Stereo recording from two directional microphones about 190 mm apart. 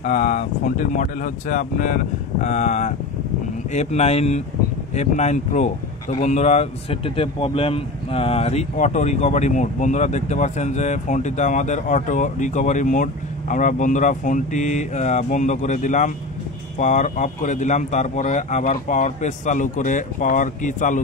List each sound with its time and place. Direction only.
0.0 s speech: 40° left (ahead or behind)